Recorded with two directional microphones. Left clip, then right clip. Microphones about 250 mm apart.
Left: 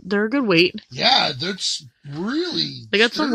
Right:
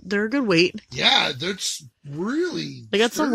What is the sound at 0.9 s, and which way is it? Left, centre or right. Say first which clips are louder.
Speech: left 1 dB; left.